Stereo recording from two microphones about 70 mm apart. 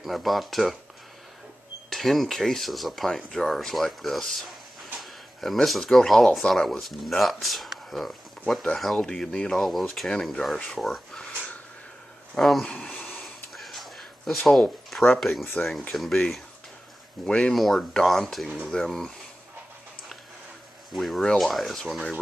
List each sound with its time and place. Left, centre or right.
0.0 s speech: centre
1.9 s speech: centre
12.4 s speech: centre
12.6 s a sound: centre
13.2 s a sound: centre
15.1 s speech: centre
17.3 s speech: centre
17.6 s speech: centre
20.9 s speech: centre